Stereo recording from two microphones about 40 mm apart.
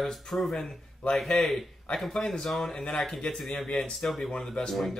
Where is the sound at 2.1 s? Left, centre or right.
Centre.